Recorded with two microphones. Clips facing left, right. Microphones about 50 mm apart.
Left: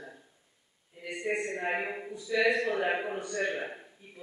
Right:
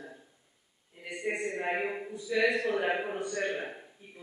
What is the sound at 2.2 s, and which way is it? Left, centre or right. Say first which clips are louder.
A man's voice: left 1 dB; centre.